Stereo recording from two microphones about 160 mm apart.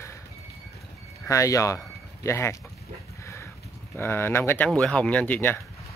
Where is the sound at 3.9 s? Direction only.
15° left (ahead or behind).